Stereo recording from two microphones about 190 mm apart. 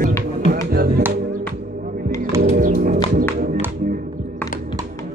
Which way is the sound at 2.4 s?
45° right (ahead or behind).